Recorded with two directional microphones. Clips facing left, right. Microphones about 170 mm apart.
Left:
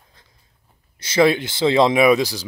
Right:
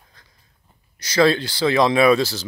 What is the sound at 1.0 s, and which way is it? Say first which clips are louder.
Speech: left 1 dB; 20° left (ahead or behind).